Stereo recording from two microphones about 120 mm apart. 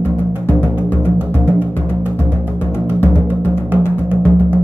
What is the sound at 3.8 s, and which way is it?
Music, 15° left (ahead or behind).